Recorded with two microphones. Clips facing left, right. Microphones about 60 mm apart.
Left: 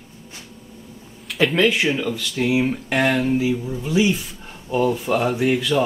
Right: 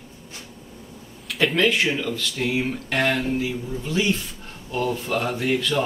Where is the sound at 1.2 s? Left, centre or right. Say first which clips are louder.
Left 2 dB; centre.